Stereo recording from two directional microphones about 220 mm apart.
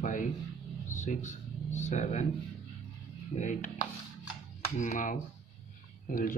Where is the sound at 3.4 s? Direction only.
35° left (ahead or behind).